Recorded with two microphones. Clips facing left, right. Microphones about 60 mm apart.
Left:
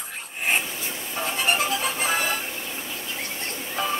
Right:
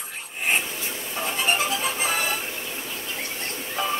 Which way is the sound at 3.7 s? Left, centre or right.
Centre.